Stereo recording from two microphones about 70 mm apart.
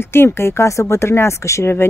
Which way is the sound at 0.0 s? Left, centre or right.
Left.